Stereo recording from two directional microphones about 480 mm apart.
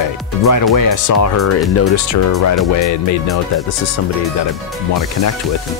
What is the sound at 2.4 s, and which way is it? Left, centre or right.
Music, left.